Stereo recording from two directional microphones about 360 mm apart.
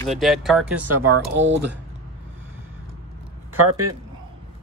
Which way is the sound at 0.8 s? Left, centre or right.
Right.